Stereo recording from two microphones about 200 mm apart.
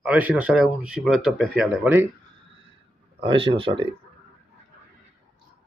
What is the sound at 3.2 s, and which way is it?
Speech, 25° right (ahead or behind).